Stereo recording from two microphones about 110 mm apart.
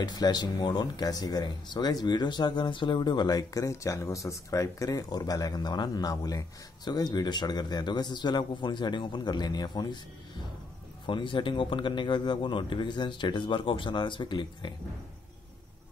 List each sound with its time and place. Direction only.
0.0 s speech: 40° left (ahead or behind)
11.1 s speech: 45° left (ahead or behind)